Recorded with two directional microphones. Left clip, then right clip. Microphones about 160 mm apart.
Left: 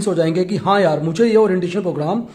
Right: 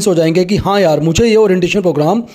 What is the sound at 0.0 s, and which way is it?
Speech, 35° right (ahead or behind).